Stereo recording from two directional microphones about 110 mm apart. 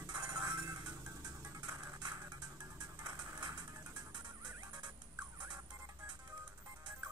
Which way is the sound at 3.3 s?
35° right (ahead or behind).